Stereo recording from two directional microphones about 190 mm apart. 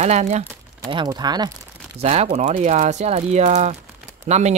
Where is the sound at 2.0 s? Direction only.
35° right (ahead or behind).